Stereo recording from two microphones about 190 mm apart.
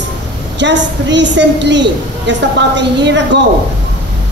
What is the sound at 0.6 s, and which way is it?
A woman's voice, 70° right (ahead or behind).